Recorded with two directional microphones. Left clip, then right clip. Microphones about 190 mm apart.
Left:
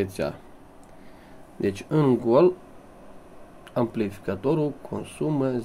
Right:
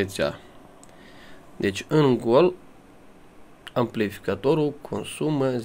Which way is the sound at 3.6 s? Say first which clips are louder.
Right 2 dB; centre (ahead or behind).